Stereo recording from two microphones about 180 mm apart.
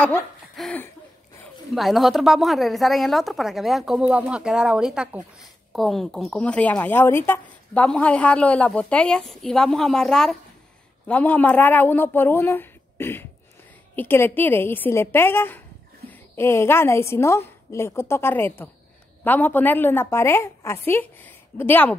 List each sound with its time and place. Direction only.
0.6 s a woman's voice: 5° left (ahead or behind)